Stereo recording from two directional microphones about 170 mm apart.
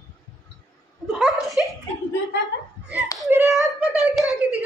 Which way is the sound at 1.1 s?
Centre (ahead or behind).